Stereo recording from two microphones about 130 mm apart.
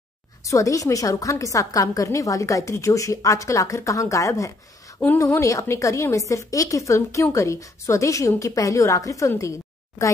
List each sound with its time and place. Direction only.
0.5 s a woman's voice: 25° left (ahead or behind)